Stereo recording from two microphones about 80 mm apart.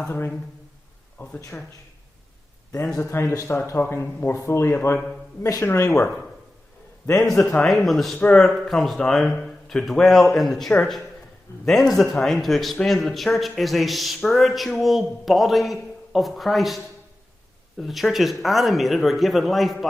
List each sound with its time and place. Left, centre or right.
1.1 s speech: centre
3.0 s speech: left
7.5 s speech: centre
8.2 s speech: centre
8.5 s speech: centre